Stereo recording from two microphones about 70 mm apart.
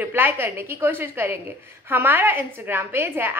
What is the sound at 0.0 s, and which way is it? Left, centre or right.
A woman's voice, right.